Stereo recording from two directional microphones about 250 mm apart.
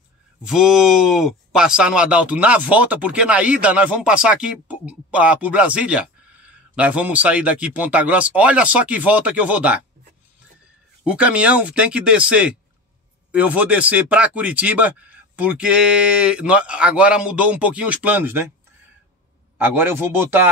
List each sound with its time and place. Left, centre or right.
0.4 s speech: centre
11.1 s speech: centre
19.6 s speech: centre